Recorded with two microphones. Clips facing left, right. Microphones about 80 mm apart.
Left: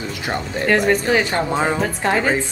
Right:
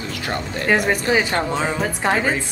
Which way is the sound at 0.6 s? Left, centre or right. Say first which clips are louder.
Left 2 dB; centre.